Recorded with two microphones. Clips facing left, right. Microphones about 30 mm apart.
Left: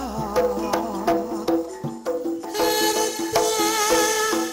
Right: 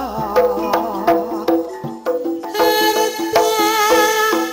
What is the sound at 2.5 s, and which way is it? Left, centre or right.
Music, centre.